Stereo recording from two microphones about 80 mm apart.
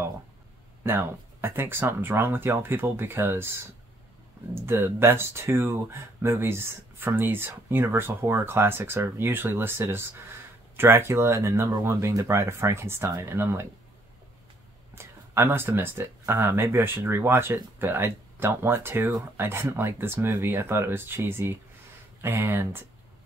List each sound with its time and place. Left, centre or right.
0.8 s speech: right
4.6 s speech: right
15.0 s speech: right